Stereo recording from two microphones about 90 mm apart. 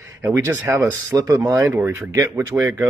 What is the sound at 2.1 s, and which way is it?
Speech, 40° right (ahead or behind).